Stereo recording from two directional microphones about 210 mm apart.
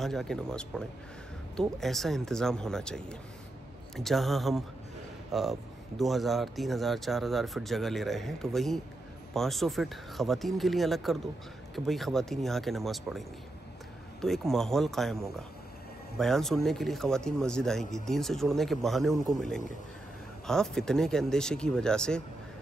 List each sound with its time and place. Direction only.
0.0 s speech: centre (ahead or behind)
14.2 s speech: centre (ahead or behind)